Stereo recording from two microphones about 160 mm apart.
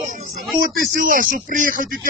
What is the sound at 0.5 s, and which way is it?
Speech, 55° right (ahead or behind).